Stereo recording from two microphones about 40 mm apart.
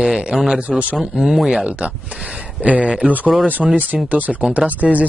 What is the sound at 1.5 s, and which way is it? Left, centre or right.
Speech, right.